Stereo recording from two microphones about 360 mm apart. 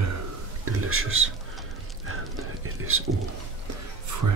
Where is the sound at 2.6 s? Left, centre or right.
Right.